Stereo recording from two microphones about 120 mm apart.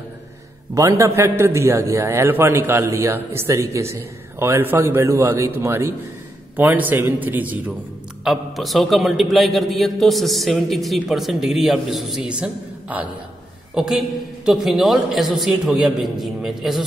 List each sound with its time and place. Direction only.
0.7 s a man's voice: 25° right (ahead or behind)
8.2 s a man's voice: centre (ahead or behind)